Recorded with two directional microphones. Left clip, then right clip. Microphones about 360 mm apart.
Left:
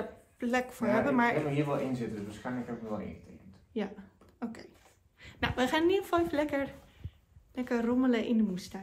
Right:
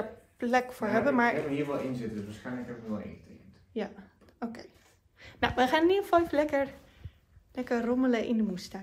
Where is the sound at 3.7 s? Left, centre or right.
Centre.